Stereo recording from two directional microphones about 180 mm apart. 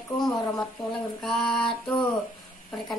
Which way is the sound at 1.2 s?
5° left (ahead or behind).